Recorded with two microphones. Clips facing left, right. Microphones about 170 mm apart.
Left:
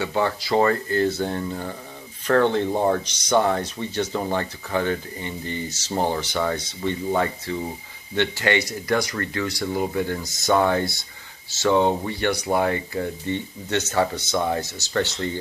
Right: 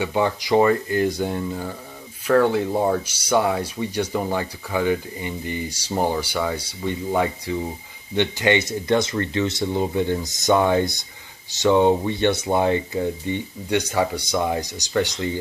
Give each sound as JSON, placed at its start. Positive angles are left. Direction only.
{"t": 0.0, "sound": "speech", "side_deg": -15}